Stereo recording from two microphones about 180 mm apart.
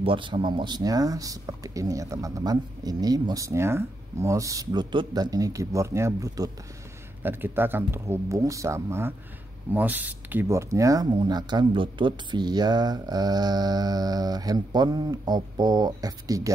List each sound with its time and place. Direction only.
0.0 s speech: 30° right (ahead or behind)